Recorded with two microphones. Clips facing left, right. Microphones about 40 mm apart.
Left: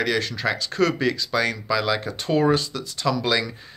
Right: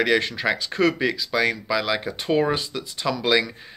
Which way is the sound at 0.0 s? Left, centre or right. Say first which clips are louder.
Right 3 dB; right.